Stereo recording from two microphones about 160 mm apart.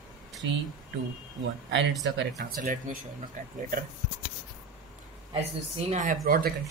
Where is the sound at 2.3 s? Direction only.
60° right (ahead or behind).